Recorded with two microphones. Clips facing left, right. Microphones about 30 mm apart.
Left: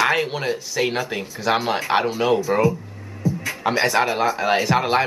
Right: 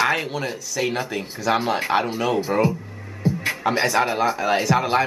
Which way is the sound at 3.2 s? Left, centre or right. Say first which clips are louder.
Right 1 dB; right.